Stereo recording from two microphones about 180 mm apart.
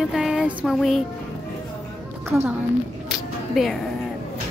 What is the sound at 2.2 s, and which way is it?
Speech, 15° right (ahead or behind).